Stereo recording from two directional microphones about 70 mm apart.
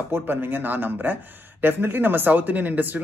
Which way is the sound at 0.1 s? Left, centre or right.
Right.